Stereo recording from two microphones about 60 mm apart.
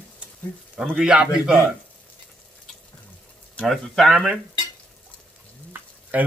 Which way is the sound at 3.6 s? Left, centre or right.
Centre.